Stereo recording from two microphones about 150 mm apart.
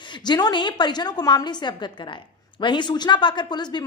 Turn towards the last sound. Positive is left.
turn(degrees=30)  # may be behind; listen again after turning